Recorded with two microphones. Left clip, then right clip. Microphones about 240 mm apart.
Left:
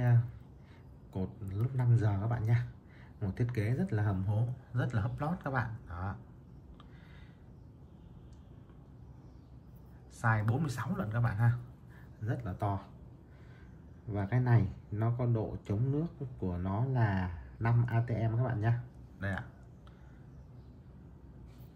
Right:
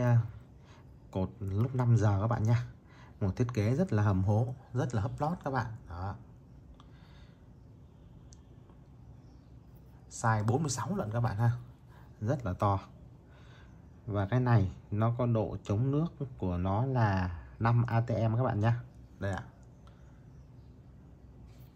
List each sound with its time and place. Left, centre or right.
1.1 s a sound: right
3.2 s speech: centre
10.2 s speech: centre
12.3 s speech: right
14.1 s speech: centre